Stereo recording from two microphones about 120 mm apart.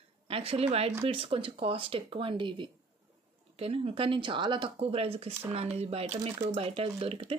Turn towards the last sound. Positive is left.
turn(degrees=-55)  # may be behind; listen again after turning